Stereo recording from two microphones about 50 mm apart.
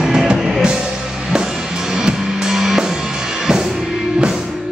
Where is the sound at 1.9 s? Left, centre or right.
Centre.